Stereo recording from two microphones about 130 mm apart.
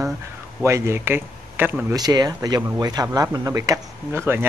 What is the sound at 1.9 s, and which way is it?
Speech, 30° right (ahead or behind).